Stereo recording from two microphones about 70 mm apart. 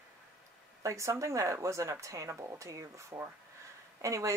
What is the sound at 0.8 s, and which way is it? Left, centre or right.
Speech, right.